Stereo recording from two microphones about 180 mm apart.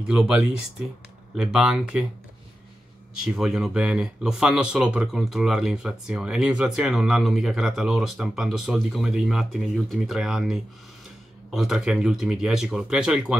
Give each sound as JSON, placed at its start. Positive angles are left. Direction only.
{"t": 0.1, "sound": "speech", "side_deg": -5}
{"t": 3.3, "sound": "speech", "side_deg": -5}